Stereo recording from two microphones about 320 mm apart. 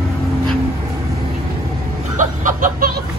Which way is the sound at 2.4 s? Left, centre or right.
Right.